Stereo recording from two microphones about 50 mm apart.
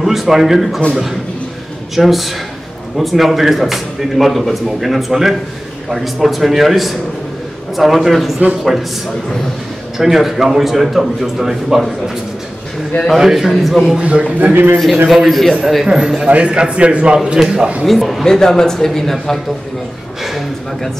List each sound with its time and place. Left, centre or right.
0.0 s speech: centre
2.0 s speech: centre
9.9 s speech: centre
13.1 s speech: centre
13.9 s a man's voice: right
14.4 s a man's voice: right
15.2 s speech: centre
15.9 s speech: centre
16.3 s a man's voice: right
17.8 s speech: centre
18.4 s speech: centre